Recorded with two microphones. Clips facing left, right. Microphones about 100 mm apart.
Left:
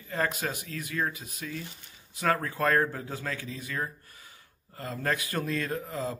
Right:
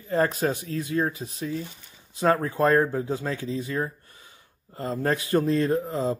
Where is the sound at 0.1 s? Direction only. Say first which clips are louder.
Right 7 dB; 30° right (ahead or behind).